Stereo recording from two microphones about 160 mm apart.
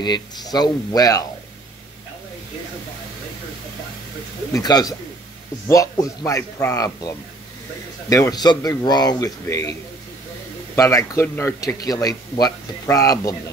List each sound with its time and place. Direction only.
0.0 s speech: 25° left (ahead or behind)
4.5 s speech: 25° left (ahead or behind)
10.8 s speech: 20° left (ahead or behind)